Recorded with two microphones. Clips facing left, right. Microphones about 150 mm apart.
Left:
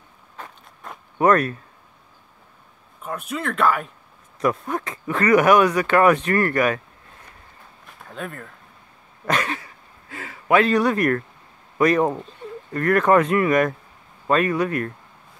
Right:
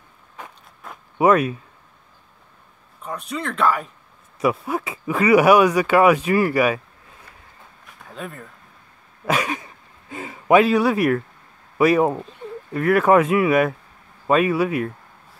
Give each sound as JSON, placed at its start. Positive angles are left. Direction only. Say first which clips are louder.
{"t": 0.4, "sound": "vehicle", "louder": "even", "side_deg": -15}
{"t": 1.1, "sound": "speech", "louder": "right 1 dB", "side_deg": -10}
{"t": 3.0, "sound": "speech", "louder": "even", "side_deg": 5}
{"t": 7.8, "sound": "a sound", "louder": "left 1 dB", "side_deg": 0}
{"t": 9.2, "sound": "dog", "louder": "right 1 dB", "side_deg": -10}
{"t": 10.6, "sound": "speech", "louder": "right 1 dB", "side_deg": -5}